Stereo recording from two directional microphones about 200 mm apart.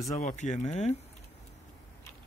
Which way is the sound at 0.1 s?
35° left (ahead or behind).